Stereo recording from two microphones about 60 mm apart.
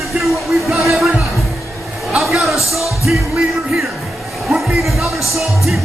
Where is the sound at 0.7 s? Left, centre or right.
Centre.